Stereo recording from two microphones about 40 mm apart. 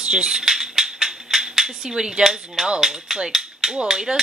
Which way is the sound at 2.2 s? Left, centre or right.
Centre.